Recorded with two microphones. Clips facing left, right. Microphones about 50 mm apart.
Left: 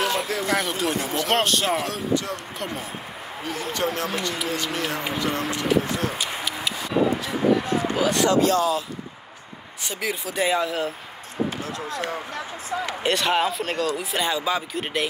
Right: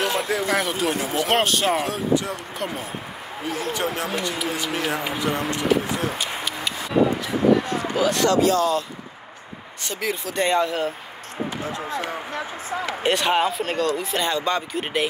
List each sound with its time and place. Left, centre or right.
0.0 s a man's voice: centre
9.8 s speech: centre
11.9 s a man's voice: centre
13.0 s speech: centre